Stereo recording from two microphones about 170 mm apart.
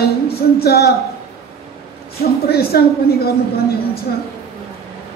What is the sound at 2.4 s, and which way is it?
A woman's voice, 65° left (ahead or behind).